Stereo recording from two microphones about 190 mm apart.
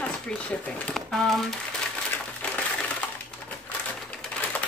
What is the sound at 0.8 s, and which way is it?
Speech, 5° left (ahead or behind).